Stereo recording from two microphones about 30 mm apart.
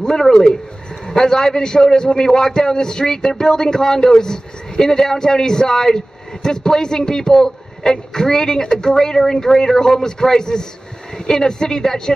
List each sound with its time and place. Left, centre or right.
0.2 s a man's voice: left